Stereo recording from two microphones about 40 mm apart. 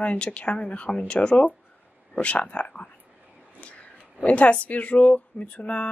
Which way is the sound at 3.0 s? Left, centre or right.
Right.